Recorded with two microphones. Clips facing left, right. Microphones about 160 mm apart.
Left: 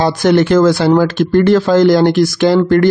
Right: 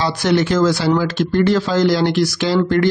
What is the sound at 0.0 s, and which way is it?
Speech, 50° left (ahead or behind).